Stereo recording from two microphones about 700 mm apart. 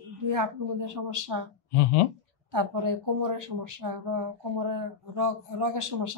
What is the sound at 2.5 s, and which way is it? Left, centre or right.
Speech, right.